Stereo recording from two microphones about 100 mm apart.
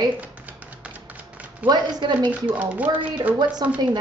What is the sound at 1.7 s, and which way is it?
Speech, 50° right (ahead or behind).